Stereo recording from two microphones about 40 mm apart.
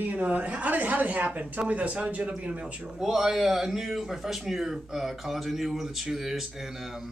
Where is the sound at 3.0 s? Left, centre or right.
Centre.